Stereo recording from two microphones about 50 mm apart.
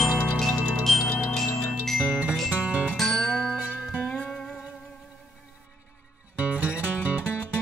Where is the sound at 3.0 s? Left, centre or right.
Centre.